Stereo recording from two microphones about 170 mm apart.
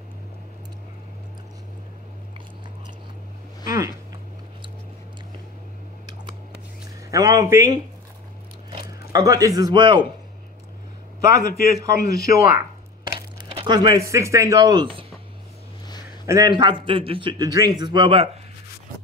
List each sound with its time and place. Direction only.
7.1 s a man's voice: 20° right (ahead or behind)
9.1 s a man's voice: 20° right (ahead or behind)
11.3 s a man's voice: 60° left (ahead or behind)
13.5 s a man's voice: 30° right (ahead or behind)
16.3 s a man's voice: 25° right (ahead or behind)